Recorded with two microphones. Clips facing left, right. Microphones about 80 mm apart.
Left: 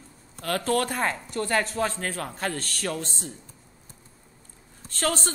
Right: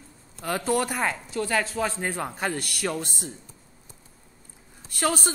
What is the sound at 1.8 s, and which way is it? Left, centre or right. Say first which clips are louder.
A man's voice: right 1 dB; centre.